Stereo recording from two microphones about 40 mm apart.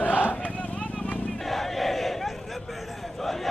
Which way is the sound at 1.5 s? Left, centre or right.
Centre.